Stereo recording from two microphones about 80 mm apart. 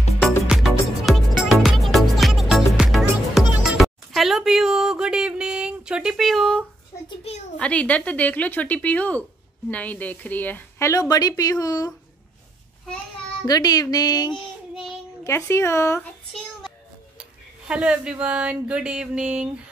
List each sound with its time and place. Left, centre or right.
0.5 s music: centre
7.5 s speech: centre
10.8 s speech: left
13.5 s speech: left
14.3 s child singing: centre
15.2 s speech: left
17.2 s speech: centre